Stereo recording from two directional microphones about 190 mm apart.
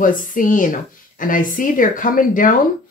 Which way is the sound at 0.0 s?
45° left (ahead or behind).